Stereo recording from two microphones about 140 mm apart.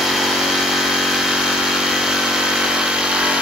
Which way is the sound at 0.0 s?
Centre (ahead or behind).